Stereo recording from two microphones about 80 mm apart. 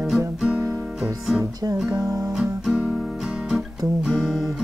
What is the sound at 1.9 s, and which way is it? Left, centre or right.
Music, right.